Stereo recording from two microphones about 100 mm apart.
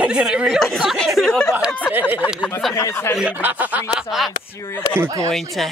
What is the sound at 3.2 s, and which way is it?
Speech, 15° right (ahead or behind).